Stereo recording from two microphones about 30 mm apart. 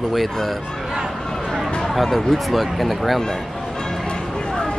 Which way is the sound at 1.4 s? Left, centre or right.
Centre.